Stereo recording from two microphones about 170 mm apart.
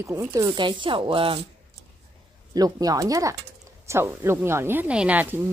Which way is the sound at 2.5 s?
20° right (ahead or behind).